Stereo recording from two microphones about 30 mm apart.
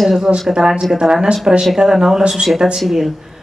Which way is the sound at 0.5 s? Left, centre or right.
Right.